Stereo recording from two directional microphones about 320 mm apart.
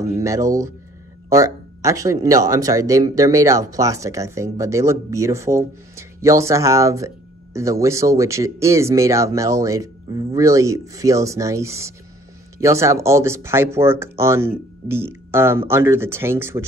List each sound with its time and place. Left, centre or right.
0.0 s speech: centre